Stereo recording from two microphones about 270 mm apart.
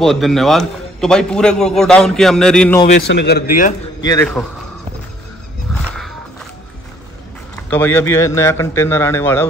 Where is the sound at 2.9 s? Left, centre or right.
Left.